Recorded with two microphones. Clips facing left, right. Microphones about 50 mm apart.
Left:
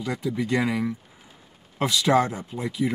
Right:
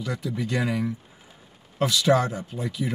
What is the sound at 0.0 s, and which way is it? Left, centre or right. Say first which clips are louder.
Speech: left 2 dB; left.